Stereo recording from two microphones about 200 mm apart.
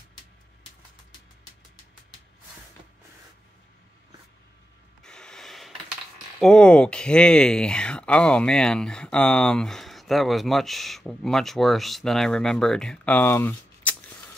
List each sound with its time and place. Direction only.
5.0 s rub: 5° left (ahead or behind)
6.4 s speech: 5° left (ahead or behind)